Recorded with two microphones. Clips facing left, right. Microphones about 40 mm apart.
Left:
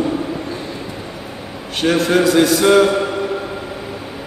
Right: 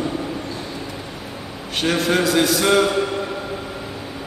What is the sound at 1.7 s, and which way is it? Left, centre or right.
Speech, centre.